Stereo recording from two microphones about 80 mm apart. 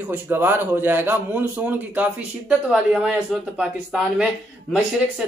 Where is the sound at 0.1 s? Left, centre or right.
Right.